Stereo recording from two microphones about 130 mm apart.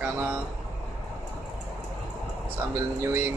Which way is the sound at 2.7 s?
20° right (ahead or behind).